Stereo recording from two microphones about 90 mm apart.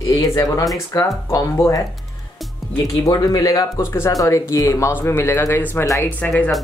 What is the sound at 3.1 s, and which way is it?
Speech, 45° left (ahead or behind).